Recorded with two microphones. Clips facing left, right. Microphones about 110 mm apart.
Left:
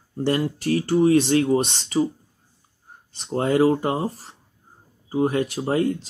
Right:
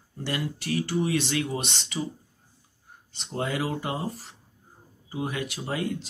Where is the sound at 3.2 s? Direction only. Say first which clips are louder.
Left 10 dB; 35° left (ahead or behind).